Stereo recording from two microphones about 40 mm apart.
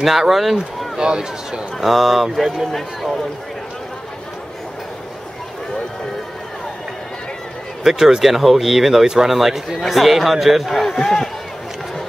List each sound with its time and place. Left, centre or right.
0.0 s speech: centre
0.9 s speech: centre
1.8 s speech: centre
7.8 s speech: centre
9.0 s speech: centre
10.9 s speech: centre